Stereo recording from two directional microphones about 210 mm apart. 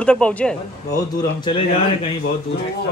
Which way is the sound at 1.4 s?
25° left (ahead or behind).